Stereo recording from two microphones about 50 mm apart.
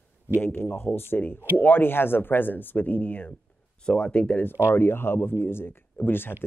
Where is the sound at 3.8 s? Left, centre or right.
Left.